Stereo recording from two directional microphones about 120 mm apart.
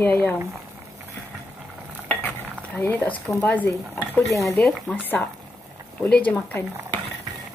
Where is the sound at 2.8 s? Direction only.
15° left (ahead or behind).